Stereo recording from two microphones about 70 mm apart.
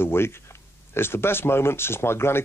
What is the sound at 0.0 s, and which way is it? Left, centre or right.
Speech, left.